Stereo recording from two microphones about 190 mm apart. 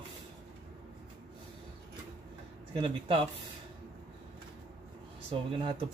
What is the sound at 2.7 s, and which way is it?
Speech, 30° right (ahead or behind).